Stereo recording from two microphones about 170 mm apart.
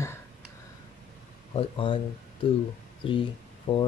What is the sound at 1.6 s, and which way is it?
Speech, 30° left (ahead or behind).